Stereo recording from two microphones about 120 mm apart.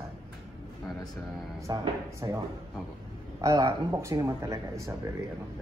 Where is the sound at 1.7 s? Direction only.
30° right (ahead or behind).